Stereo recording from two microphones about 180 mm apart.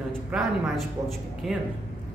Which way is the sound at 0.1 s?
Centre (ahead or behind).